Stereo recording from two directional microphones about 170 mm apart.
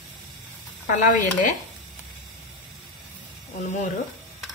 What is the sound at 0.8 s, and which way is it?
Speech, 50° left (ahead or behind).